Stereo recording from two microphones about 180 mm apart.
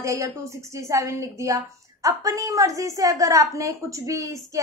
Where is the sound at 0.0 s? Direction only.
15° right (ahead or behind).